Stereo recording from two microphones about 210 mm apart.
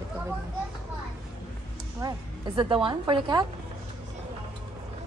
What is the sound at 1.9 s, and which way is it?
A woman's voice, 20° right (ahead or behind).